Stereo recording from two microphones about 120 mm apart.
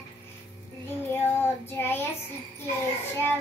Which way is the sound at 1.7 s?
20° left (ahead or behind).